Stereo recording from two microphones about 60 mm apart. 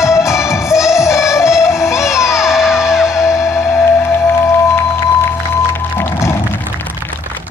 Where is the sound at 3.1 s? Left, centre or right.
Left.